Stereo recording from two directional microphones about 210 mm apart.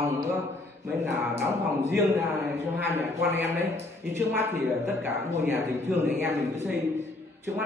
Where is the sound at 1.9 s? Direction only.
10° right (ahead or behind).